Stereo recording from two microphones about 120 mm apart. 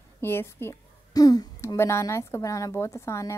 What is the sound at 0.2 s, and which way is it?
A woman's voice, 20° left (ahead or behind).